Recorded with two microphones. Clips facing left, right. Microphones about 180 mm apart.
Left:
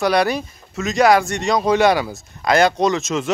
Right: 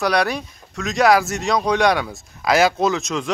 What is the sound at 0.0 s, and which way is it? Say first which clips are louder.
Speech: left 2 dB; centre (ahead or behind).